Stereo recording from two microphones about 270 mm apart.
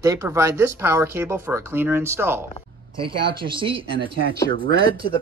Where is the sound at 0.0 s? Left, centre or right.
Centre.